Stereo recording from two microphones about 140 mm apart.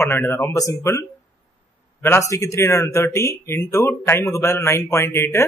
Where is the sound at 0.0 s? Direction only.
15° left (ahead or behind).